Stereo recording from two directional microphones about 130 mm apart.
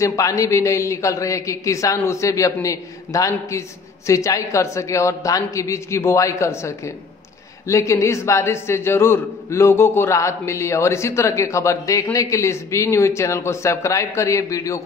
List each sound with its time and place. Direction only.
0.0 s a man's voice: 25° left (ahead or behind)